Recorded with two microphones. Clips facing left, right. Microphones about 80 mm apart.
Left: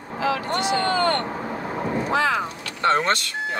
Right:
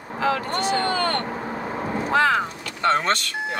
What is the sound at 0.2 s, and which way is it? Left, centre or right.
Speech, right.